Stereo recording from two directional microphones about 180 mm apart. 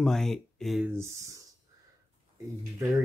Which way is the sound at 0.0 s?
Centre (ahead or behind).